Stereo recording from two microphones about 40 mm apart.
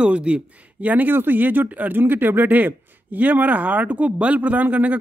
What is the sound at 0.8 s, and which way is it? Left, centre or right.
Speech, right.